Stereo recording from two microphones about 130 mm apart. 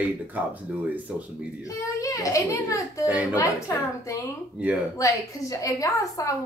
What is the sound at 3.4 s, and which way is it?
A woman's voice, 25° left (ahead or behind).